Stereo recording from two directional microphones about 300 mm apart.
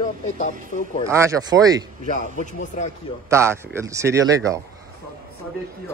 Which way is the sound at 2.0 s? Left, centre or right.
Left.